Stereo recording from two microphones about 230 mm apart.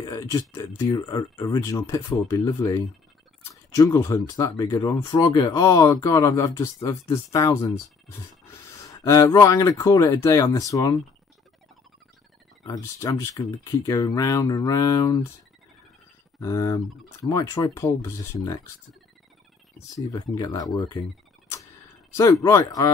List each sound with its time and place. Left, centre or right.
0.0 s speech: centre
12.6 s speech: centre
16.3 s speech: centre
20.0 s speech: centre
22.1 s speech: centre